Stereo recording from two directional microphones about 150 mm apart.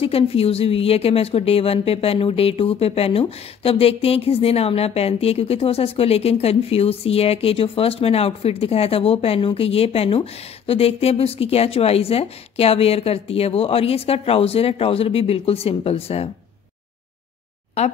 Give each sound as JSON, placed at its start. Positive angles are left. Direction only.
{"t": 0.0, "sound": "speech", "side_deg": 40}